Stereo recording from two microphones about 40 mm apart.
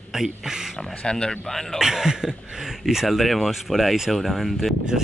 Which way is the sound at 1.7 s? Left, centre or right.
Centre.